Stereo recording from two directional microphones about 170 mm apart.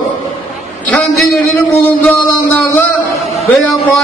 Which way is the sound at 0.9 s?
5° left (ahead or behind).